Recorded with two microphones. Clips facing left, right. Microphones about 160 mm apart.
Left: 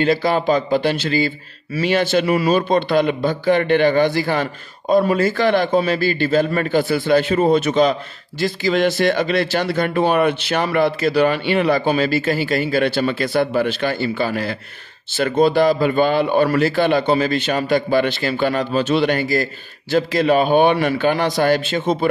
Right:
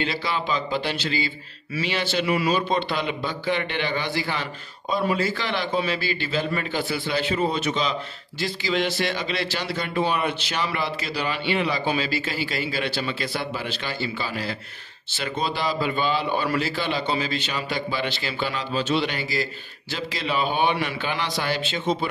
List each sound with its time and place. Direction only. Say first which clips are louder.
0.0 s a man's voice: left 10 dB; 45° left (ahead or behind)